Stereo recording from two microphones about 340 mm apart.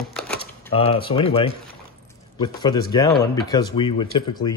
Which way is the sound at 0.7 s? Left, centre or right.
Centre.